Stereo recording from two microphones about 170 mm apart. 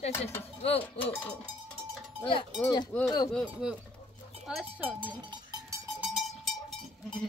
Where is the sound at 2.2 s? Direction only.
30° left (ahead or behind).